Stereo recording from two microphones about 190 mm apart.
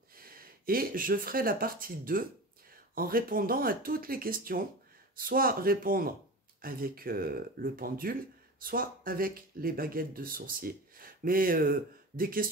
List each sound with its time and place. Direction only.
0.1 s speech: 50° right (ahead or behind)